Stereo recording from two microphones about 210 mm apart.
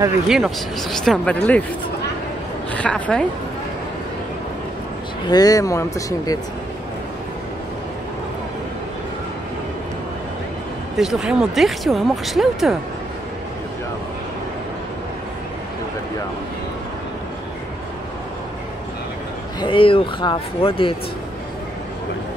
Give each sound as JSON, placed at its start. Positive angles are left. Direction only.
{"t": 0.3, "sound": "speech", "side_deg": 0}
{"t": 2.7, "sound": "speech", "side_deg": 5}
{"t": 5.3, "sound": "speech", "side_deg": 15}
{"t": 11.0, "sound": "speech", "side_deg": -5}
{"t": 19.6, "sound": "speech", "side_deg": 25}